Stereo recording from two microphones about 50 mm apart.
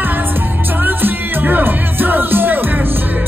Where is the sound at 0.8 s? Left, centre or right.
Right.